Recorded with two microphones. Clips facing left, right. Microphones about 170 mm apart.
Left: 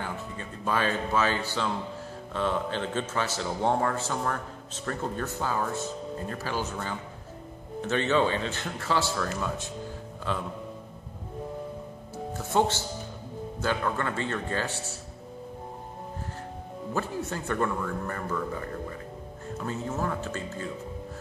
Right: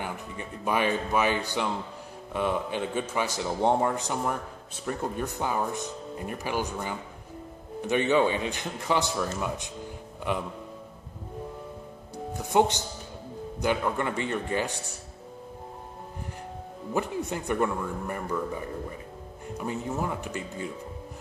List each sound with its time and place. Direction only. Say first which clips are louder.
0.0 s a man's voice: even; 15° right (ahead or behind)
12.4 s a man's voice: right 2 dB; 15° right (ahead or behind)
16.9 s a man's voice: right 2 dB; 15° right (ahead or behind)